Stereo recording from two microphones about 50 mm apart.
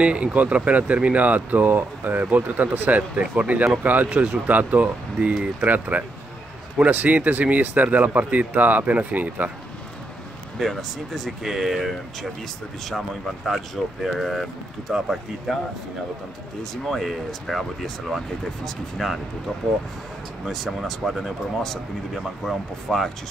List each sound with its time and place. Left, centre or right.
0.0 s speech: right
10.6 s speech: centre
14.0 s speech: centre
16.8 s speech: centre
20.4 s speech: centre